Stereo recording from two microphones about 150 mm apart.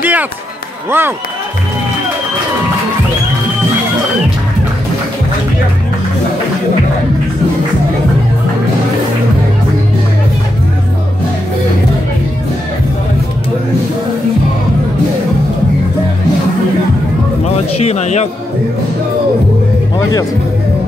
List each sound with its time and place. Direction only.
0.0 s a sound: 10° right (ahead or behind)
0.8 s speech: 15° right (ahead or behind)
17.7 s a man's voice: 45° left (ahead or behind)